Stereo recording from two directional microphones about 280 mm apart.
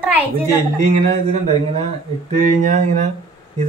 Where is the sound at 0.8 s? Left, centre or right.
Right.